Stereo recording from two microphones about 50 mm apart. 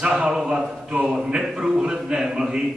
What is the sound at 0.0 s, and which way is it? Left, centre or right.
Speech, centre.